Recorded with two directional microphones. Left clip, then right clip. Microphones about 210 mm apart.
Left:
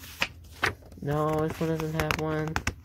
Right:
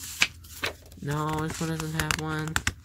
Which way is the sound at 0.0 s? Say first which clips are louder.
Right 5 dB; 30° right (ahead or behind).